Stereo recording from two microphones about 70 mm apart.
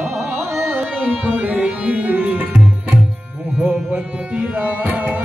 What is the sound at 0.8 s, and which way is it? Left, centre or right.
Music, right.